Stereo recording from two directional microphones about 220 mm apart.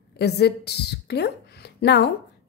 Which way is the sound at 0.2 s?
50° left (ahead or behind).